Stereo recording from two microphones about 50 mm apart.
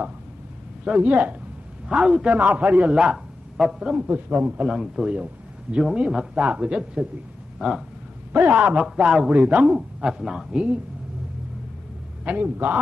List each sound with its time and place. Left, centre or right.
0.9 s a man's voice: right
2.0 s a man's voice: centre
2.2 s a woman's voice: right
3.5 s a man's voice: centre
4.1 s a man's voice: right
4.6 s a man's voice: centre
5.1 s a woman's voice: right
7.5 s speech: centre
8.3 s a man's voice: right
8.8 s a man's voice: centre
9.4 s a woman's voice: right
9.9 s a man's voice: centre
12.3 s a man's voice: right